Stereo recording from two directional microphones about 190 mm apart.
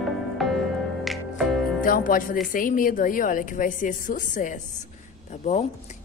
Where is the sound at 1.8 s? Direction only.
45° left (ahead or behind).